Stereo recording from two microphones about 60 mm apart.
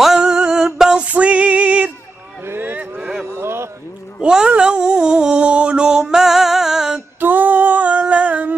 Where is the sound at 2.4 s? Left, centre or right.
Right.